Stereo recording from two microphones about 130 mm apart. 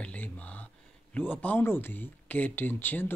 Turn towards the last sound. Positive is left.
turn(degrees=15)  # may be behind; listen again after turning